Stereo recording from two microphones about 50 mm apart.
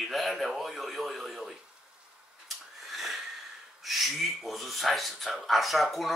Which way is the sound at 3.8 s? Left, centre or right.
Centre.